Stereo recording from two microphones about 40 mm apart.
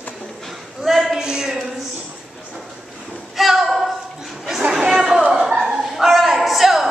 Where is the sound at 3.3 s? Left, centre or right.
Centre.